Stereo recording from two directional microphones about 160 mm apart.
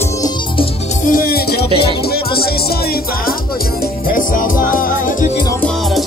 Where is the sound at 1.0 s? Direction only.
65° left (ahead or behind); by 1.7 s 85° left.